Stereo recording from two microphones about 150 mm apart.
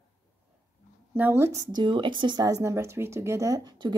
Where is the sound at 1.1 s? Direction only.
15° right (ahead or behind).